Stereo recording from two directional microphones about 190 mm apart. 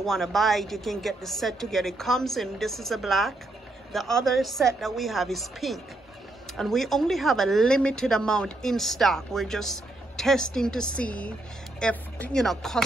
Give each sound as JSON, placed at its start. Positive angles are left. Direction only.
{"t": 0.0, "sound": "speech", "side_deg": 0}